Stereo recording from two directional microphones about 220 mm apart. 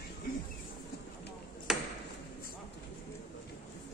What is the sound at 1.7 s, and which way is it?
Ping, centre (ahead or behind).